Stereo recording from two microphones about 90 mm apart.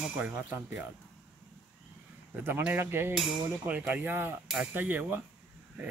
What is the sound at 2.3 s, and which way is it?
Speech, 25° right (ahead or behind).